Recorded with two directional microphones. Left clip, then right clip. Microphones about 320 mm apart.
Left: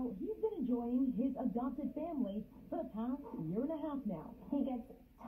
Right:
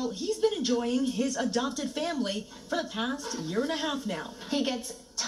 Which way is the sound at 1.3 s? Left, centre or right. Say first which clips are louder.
Right 10 dB; right.